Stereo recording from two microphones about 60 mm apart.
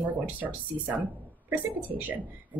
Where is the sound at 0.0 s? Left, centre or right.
Right.